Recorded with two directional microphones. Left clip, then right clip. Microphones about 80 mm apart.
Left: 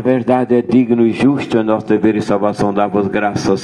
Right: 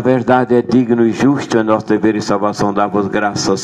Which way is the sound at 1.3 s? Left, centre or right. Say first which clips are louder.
Right 1 dB; right.